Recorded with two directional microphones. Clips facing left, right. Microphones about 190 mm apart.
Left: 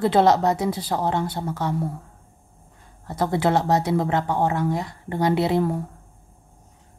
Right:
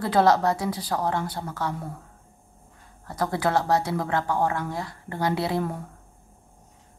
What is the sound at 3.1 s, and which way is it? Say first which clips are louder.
Speech: left 4 dB; 25° left (ahead or behind).